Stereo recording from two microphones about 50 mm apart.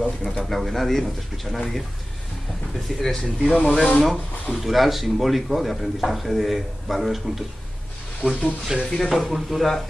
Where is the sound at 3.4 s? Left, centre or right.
Centre.